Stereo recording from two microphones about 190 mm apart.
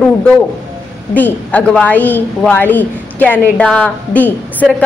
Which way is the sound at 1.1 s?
10° left (ahead or behind).